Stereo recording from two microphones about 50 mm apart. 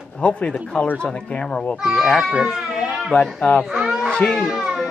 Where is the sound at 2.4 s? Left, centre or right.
Centre.